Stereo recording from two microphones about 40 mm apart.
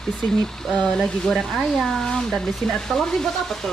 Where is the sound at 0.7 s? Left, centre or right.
Left.